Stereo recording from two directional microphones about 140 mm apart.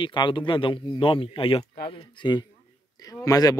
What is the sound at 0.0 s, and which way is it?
Speech, 35° left (ahead or behind).